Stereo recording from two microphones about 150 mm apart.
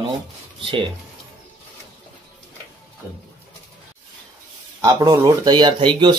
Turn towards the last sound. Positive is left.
turn(degrees=-30)  # may be behind; listen again after turning